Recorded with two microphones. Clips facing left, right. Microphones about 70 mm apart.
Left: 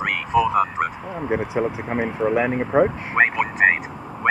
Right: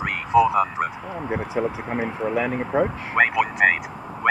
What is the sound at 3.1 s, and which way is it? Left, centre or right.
Vehicle, left.